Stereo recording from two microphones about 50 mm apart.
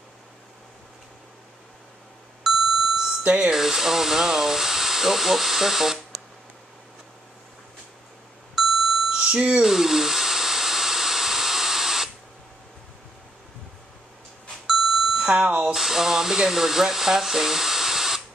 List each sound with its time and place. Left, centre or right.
2.4 s beep: centre
3.3 s speech: centre
3.5 s speech: centre
8.5 s a sound: centre
9.1 s smoke detector: right
9.7 s a sound: centre
14.7 s doorbell: centre
15.7 s speech: centre